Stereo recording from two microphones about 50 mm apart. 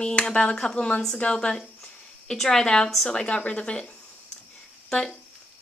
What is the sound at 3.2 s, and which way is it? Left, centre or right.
Speech, left.